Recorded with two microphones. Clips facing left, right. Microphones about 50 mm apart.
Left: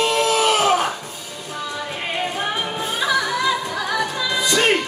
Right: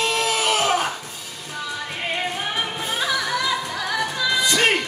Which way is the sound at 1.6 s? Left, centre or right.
Centre.